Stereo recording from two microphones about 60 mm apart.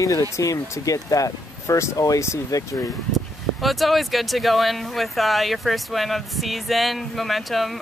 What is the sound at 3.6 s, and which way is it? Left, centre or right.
Speech, centre.